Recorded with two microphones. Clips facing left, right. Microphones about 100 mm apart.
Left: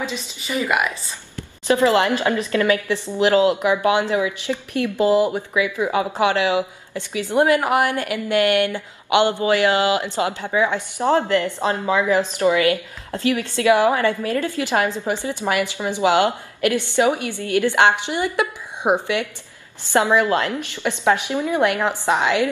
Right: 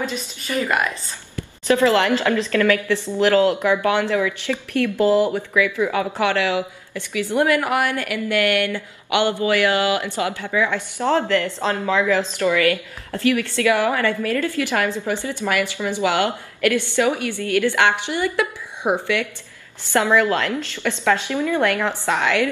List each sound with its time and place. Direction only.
0.5 s a woman's voice: 15° left (ahead or behind)